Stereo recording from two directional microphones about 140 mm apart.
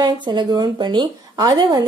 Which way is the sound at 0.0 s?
30° right (ahead or behind).